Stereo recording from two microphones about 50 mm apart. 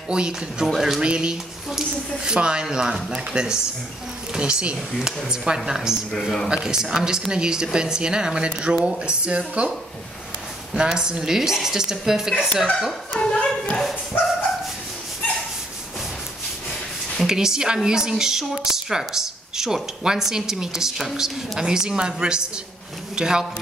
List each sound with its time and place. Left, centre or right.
0.1 s speech: centre
1.0 s speech: centre
6.1 s speech: centre
6.5 s speech: centre
10.8 s speech: centre
13.2 s a sound: centre
14.1 s dog: left
17.2 s a woman's voice: centre